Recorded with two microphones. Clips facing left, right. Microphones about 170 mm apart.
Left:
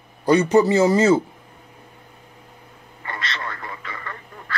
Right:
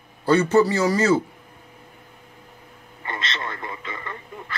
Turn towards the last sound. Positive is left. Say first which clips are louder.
# right 1 dB
turn(degrees=-20)  # may be behind; listen again after turning